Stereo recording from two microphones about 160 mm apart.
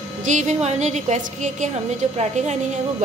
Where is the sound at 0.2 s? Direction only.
50° right (ahead or behind).